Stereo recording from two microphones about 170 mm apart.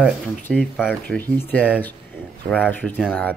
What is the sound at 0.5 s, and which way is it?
Speech, centre (ahead or behind).